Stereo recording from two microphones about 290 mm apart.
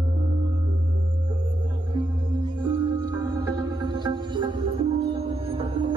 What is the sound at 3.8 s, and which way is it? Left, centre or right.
Music, centre.